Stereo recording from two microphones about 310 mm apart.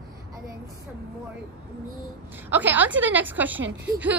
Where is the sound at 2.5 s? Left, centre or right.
Centre.